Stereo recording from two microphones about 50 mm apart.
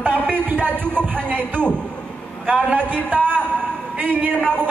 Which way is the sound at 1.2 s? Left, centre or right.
Right.